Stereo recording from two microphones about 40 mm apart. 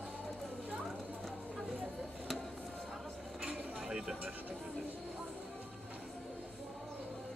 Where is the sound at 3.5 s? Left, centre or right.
Right.